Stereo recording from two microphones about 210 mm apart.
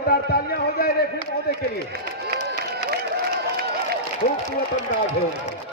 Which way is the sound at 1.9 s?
50° right (ahead or behind).